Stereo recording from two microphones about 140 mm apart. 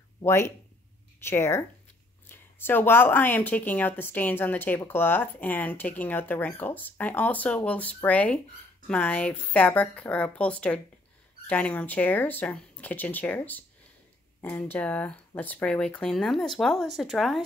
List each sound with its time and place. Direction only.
0.2 s speech: 15° left (ahead or behind); by 17.4 s centre (ahead or behind)